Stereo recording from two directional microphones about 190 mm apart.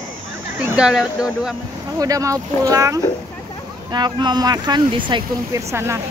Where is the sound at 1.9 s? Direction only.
20° right (ahead or behind).